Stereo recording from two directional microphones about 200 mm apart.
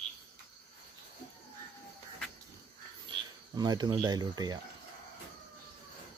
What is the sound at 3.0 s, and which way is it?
Speech, 20° right (ahead or behind).